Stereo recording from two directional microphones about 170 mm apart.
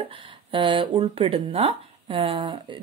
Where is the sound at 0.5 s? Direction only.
30° right (ahead or behind).